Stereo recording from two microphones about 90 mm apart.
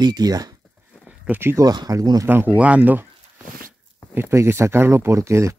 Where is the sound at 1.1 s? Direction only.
20° right (ahead or behind).